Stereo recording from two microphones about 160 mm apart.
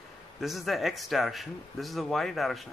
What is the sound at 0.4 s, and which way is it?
Speech, centre (ahead or behind).